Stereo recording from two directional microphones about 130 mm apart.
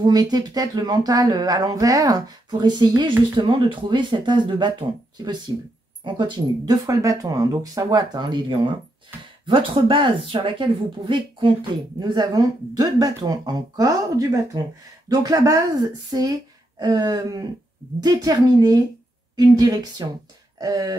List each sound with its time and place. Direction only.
0.0 s speech: 30° right (ahead or behind)